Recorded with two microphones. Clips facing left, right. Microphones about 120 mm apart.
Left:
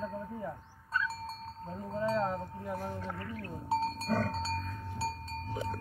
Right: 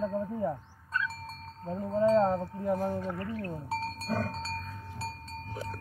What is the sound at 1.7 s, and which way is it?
Wind chime, 30° right (ahead or behind).